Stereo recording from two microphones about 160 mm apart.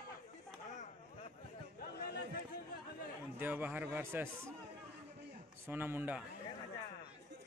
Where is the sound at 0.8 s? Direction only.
40° left (ahead or behind).